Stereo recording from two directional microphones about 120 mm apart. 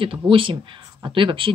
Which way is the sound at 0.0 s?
45° right (ahead or behind).